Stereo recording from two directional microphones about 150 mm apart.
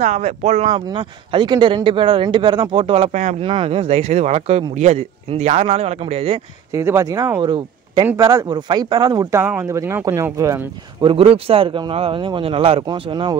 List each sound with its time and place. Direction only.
0.0 s speech: 50° right (ahead or behind)
3.1 s speech: 55° right (ahead or behind)
3.3 s speech: 40° right (ahead or behind)
6.7 s speech: 20° right (ahead or behind)
11.0 s speech: 35° right (ahead or behind)